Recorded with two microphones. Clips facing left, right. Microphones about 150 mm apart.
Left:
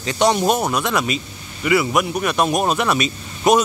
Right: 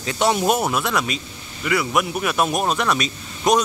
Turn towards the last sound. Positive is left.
turn(degrees=5)  # may be behind; listen again after turning